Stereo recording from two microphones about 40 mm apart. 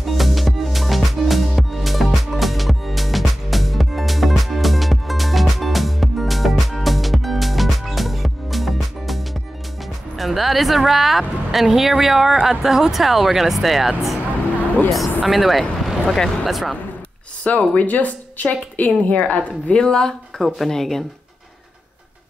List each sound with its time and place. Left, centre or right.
0.0 s music: centre
10.1 s speech: centre
15.2 s speech: centre
17.4 s a woman's voice: left
18.9 s a woman's voice: left
19.1 s a woman's voice: left
19.7 s speech: centre